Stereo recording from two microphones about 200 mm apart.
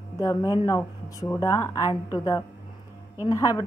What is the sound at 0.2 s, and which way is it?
A woman's voice, 15° left (ahead or behind).